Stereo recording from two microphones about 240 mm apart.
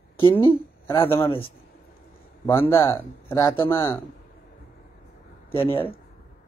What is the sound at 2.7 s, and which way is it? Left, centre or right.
Speech, centre.